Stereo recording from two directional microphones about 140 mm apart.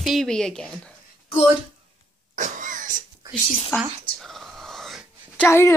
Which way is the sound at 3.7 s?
20° left (ahead or behind).